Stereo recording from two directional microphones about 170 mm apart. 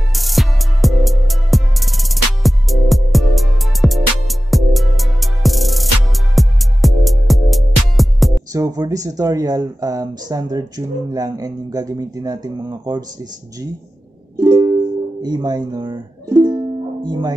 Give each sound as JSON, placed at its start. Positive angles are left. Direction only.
{"t": 0.1, "sound": "music", "side_deg": 0}
{"t": 8.5, "sound": "speech", "side_deg": -20}
{"t": 14.4, "sound": "music", "side_deg": -15}